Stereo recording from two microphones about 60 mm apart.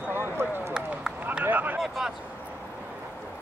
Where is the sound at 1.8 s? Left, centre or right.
Centre.